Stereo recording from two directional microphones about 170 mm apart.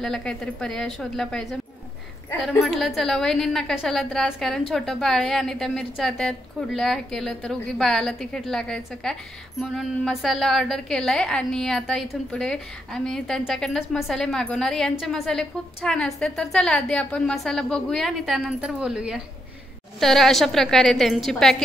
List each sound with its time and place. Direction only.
0.0 s a woman's voice: 5° left (ahead or behind)
2.6 s a woman's voice: centre (ahead or behind)